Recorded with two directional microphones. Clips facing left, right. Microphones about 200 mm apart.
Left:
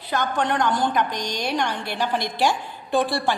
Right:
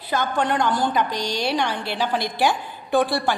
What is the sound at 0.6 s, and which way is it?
Speech, 20° left (ahead or behind).